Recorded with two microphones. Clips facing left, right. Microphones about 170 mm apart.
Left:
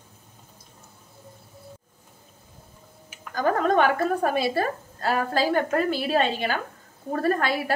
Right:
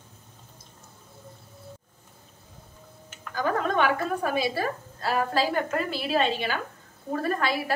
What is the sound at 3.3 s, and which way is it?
A woman's voice, 45° left (ahead or behind).